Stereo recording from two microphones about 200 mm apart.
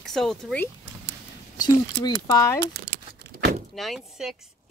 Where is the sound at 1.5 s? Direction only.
20° left (ahead or behind).